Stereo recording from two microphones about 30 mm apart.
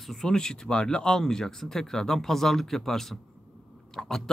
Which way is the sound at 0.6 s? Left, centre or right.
Left.